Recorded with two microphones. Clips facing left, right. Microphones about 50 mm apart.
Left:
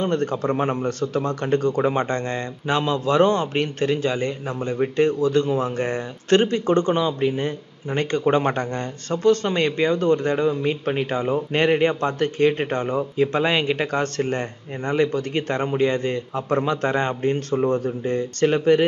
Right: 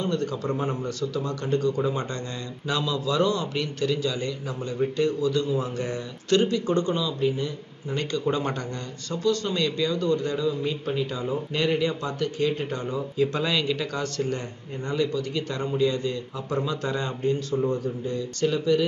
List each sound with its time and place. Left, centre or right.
0.0 s a man's voice: left